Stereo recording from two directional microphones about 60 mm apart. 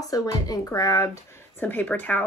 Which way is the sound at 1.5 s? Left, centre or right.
Left.